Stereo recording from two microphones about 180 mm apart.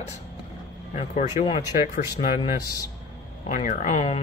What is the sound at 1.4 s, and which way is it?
Speech, 45° left (ahead or behind).